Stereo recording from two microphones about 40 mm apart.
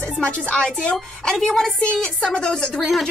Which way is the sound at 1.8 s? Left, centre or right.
Left.